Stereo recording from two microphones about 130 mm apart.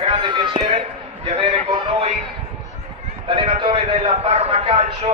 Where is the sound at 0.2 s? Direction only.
35° right (ahead or behind).